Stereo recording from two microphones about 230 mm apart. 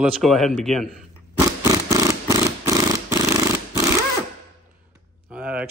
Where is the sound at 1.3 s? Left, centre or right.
Centre.